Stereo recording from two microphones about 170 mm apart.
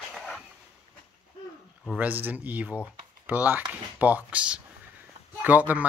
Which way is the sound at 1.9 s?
10° right (ahead or behind).